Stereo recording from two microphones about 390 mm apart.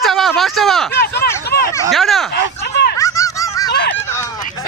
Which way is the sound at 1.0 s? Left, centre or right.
Left.